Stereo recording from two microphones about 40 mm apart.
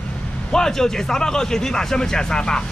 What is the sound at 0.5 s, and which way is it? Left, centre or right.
Speech, centre.